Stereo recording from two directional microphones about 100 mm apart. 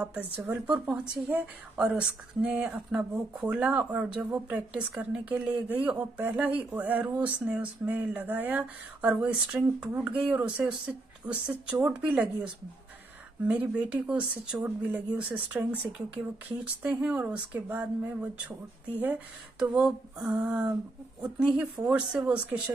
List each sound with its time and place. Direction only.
0.5 s a woman's voice: 15° right (ahead or behind)
13.5 s a woman's voice: 15° right (ahead or behind)
19.6 s a woman's voice: 5° right (ahead or behind)